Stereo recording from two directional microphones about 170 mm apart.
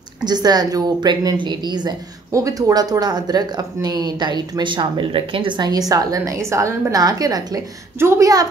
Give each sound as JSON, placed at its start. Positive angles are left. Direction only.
{"t": 0.2, "sound": "a woman's voice", "side_deg": -25}